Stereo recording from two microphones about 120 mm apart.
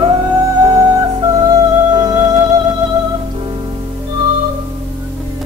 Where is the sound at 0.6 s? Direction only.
35° right (ahead or behind).